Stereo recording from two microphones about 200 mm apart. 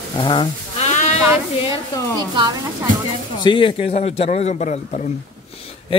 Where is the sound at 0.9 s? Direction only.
35° left (ahead or behind).